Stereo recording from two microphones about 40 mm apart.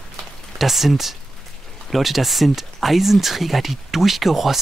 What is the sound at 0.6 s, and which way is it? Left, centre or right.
Speech, centre.